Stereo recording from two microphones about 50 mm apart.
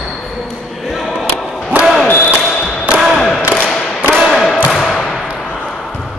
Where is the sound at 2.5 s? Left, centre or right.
Centre.